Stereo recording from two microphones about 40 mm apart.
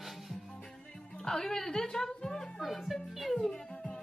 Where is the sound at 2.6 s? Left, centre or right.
Centre.